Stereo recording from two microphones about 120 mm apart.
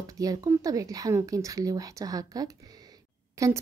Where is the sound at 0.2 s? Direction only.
30° right (ahead or behind).